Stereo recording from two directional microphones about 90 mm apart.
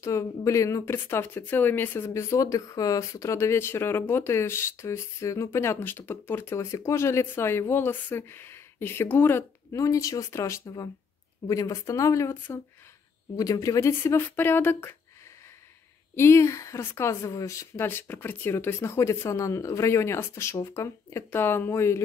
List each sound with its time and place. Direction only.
0.0 s speech: 35° left (ahead or behind)
2.0 s speech: 35° left (ahead or behind)
9.7 s a woman's voice: 35° left (ahead or behind)
13.4 s speech: 40° left (ahead or behind); by 15.0 s 25° left (ahead or behind)
16.2 s a woman's voice: 30° left (ahead or behind)